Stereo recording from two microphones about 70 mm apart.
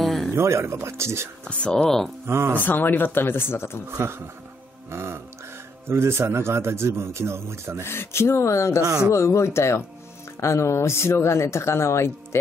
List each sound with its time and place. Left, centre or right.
0.0 s a sound: centre
0.3 s speech: right
1.5 s speech: centre
2.2 s speech: right
2.6 s speech: left
3.9 s speech: right
7.8 s speech: left